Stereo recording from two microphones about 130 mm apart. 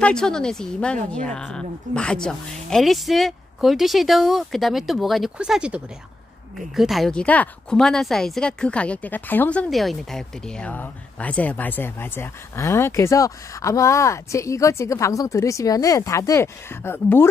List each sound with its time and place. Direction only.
0.0 s a woman's voice: 5° left (ahead or behind)